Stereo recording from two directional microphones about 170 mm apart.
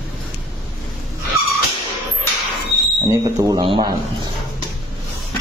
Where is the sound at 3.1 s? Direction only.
20° right (ahead or behind).